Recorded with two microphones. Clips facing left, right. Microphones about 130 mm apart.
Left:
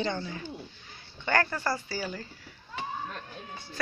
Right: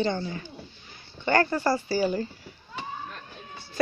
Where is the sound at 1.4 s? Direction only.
25° right (ahead or behind).